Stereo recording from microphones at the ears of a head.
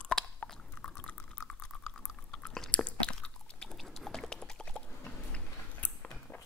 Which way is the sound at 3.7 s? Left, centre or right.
Centre.